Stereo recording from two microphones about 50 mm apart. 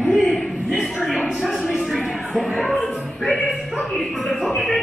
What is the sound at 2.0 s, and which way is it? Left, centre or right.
Music, centre.